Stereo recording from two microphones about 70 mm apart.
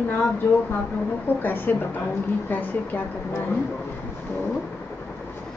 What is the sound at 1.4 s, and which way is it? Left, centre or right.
Speech, left.